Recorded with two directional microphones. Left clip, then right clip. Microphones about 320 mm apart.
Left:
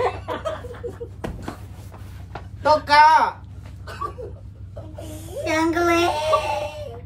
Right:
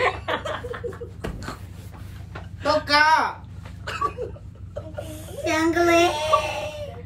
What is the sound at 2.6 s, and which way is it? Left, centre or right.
Speech, centre.